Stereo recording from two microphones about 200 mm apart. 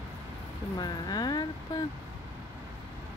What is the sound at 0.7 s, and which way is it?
Speech, 20° left (ahead or behind).